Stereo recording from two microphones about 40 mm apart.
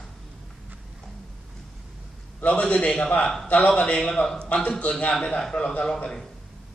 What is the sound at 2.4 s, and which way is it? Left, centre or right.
A man's voice, left.